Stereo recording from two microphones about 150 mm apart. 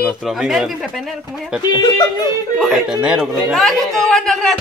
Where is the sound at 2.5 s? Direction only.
Centre (ahead or behind).